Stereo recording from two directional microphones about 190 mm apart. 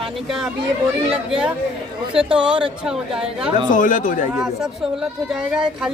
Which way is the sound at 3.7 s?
45° left (ahead or behind).